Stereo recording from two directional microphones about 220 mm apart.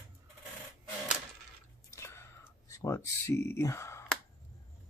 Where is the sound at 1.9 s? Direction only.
10° left (ahead or behind).